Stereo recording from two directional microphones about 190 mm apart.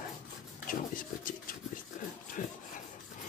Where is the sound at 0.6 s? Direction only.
45° left (ahead or behind).